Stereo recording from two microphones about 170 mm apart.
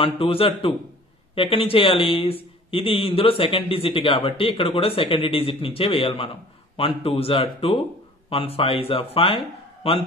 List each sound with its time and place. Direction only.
0.0 s speech: 30° left (ahead or behind)